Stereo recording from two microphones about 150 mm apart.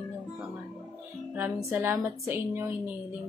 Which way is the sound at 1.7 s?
15° right (ahead or behind).